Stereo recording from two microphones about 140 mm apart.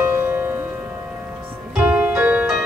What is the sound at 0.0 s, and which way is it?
Music, 15° right (ahead or behind).